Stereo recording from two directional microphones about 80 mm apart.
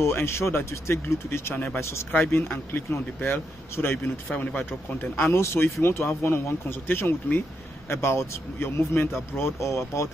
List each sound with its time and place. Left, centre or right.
0.0 s speech: left
2.4 s speech: left